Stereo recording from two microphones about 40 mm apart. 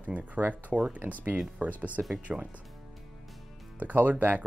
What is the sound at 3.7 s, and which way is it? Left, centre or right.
Speech, right.